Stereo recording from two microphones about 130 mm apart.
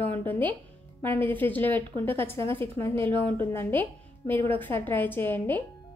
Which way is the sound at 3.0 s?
40° right (ahead or behind).